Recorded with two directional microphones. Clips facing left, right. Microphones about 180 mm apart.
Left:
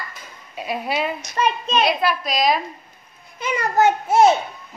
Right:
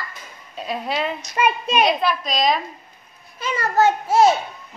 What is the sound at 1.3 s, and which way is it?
Speech, 10° right (ahead or behind).